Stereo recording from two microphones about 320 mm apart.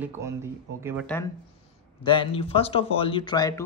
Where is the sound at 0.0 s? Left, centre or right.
Centre.